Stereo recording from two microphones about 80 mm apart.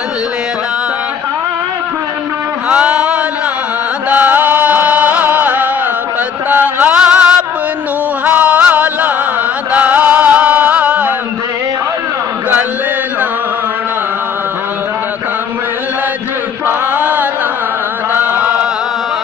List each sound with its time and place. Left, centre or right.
2.7 s a sound: centre
4.1 s music: right
6.5 s chant: right
7.0 s music: centre
8.3 s music: right
16.6 s chant: right